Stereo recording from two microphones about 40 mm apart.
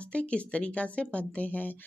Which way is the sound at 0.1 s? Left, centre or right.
Left.